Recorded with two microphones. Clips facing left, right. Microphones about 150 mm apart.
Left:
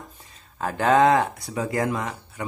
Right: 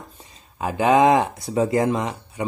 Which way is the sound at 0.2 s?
15° right (ahead or behind).